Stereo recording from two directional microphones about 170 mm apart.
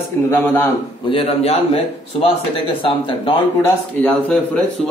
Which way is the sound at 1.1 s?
35° left (ahead or behind).